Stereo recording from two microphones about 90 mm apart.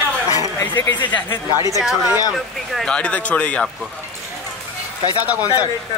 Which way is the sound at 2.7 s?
10° left (ahead or behind).